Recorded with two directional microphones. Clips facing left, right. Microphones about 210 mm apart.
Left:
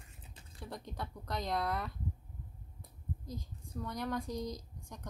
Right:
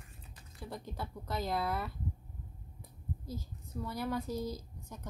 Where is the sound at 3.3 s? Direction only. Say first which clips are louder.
Right 2 dB; 5° right (ahead or behind).